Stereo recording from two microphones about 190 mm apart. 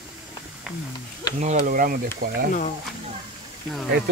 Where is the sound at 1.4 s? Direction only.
40° right (ahead or behind).